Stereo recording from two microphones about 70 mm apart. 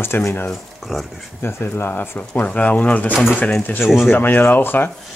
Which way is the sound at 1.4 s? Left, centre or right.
Left.